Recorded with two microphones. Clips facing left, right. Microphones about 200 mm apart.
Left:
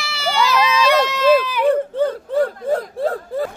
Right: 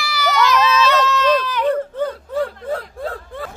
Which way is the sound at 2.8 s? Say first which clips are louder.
Left 6 dB; 40° left (ahead or behind).